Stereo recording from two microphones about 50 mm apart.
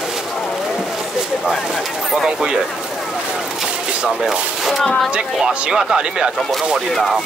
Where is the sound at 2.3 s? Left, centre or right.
Centre.